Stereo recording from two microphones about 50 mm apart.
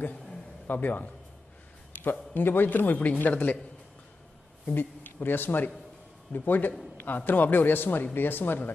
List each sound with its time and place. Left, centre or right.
0.7 s speech: left
2.0 s speech: left
4.7 s a man's voice: left